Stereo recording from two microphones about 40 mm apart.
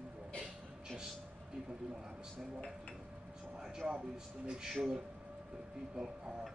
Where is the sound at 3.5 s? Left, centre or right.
Centre.